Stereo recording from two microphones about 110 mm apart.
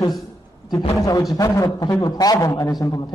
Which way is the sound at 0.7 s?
35° left (ahead or behind).